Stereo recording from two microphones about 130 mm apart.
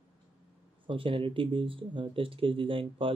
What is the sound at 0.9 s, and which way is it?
Speech, 40° right (ahead or behind).